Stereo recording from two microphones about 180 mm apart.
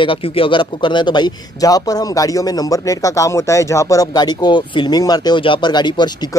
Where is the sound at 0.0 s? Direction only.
30° left (ahead or behind).